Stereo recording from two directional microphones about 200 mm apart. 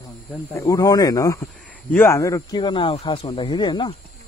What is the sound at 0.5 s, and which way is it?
Speech, 15° left (ahead or behind).